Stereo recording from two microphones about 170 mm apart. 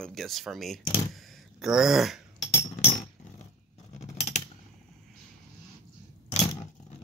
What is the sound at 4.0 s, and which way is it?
Scissors, 40° left (ahead or behind).